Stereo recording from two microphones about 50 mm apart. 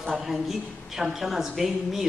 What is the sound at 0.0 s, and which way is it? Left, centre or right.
A man's voice, centre.